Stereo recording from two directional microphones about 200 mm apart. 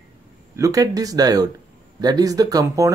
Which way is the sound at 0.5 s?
15° right (ahead or behind).